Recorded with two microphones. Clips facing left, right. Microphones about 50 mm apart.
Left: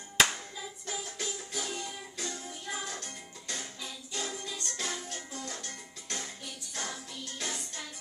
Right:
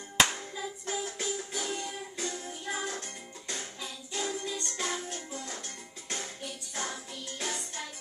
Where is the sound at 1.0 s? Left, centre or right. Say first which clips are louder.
Right 4 dB; centre.